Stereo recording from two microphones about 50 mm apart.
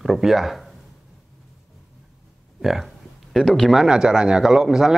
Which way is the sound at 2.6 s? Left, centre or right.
Centre.